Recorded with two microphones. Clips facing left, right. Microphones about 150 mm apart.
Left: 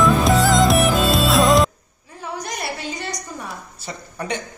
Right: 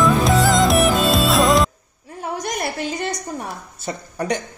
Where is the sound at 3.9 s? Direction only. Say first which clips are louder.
Right 5 dB; 40° right (ahead or behind).